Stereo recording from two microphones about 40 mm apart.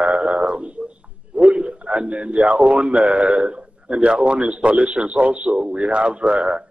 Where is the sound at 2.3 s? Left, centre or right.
Centre.